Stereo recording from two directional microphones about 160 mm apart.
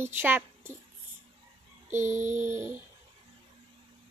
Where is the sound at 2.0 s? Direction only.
50° right (ahead or behind).